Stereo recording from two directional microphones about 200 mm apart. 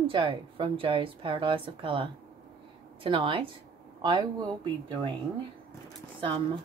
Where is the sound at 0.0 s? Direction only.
25° right (ahead or behind).